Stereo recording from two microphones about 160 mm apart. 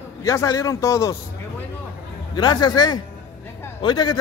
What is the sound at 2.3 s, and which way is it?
A man's voice, 25° left (ahead or behind).